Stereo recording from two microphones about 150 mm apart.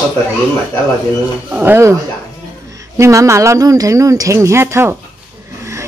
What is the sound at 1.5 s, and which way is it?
A woman's voice, 15° right (ahead or behind).